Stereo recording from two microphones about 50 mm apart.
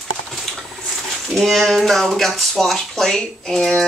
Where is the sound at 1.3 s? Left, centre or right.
Centre.